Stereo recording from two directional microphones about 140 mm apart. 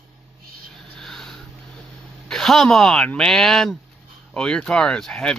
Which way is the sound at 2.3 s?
5° left (ahead or behind).